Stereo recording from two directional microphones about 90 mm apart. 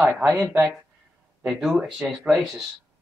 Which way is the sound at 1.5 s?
5° right (ahead or behind).